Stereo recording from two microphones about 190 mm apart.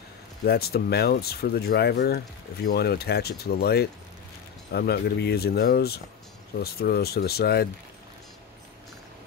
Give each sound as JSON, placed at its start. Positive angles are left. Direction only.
{"t": 0.5, "sound": "speech", "side_deg": 55}